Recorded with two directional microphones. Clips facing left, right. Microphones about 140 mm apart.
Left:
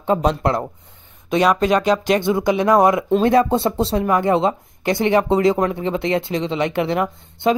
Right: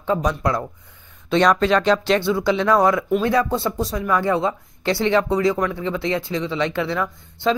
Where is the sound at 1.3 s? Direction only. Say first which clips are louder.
Left 1 dB; 10° left (ahead or behind).